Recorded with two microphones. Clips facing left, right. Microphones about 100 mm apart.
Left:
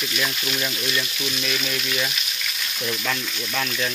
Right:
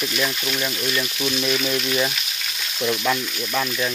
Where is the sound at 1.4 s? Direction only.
30° right (ahead or behind).